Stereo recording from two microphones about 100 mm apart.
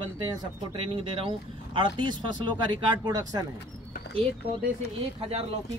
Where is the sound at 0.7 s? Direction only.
65° right (ahead or behind); by 3.4 s 40° right (ahead or behind).